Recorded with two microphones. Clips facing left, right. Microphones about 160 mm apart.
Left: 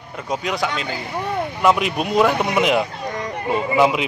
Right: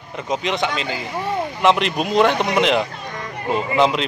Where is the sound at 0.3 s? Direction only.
Centre (ahead or behind).